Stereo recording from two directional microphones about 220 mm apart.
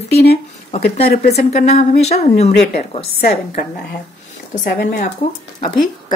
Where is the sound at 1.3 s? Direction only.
30° left (ahead or behind).